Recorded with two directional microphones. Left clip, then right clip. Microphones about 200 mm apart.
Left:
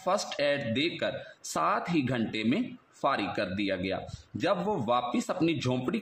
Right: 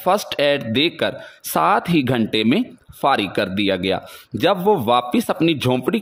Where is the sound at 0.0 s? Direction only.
45° right (ahead or behind).